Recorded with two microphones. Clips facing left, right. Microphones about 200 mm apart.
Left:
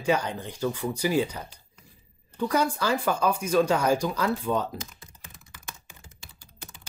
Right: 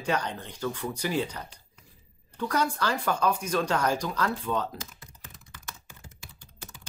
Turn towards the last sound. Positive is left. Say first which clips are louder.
# even
turn(degrees=10)  # may be behind; listen again after turning